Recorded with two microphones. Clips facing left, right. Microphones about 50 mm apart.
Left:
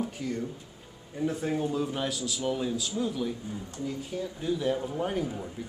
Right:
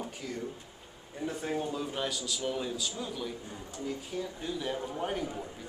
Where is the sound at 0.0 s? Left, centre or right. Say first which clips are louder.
Left 6 dB; centre.